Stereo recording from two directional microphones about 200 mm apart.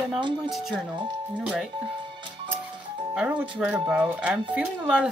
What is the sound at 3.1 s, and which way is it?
Speech, 5° right (ahead or behind).